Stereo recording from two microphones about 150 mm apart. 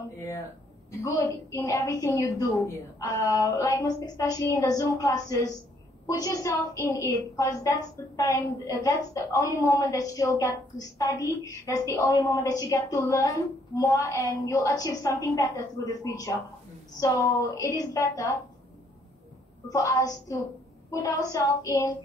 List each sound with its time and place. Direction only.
0.9 s a woman's voice: 20° left (ahead or behind)
19.7 s a woman's voice: 20° left (ahead or behind)